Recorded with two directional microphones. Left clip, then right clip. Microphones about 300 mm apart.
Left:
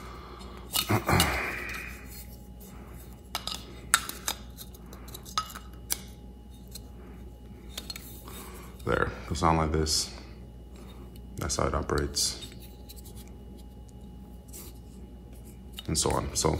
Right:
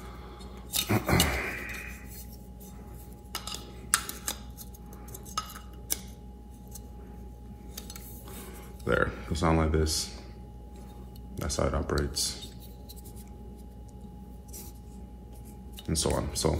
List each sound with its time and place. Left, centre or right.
0.0 s scissors: left
3.3 s a sound: left
7.7 s dishes: left
11.3 s speech: left
15.7 s speech: centre